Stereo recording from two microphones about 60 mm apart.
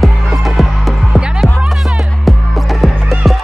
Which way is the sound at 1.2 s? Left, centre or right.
Centre.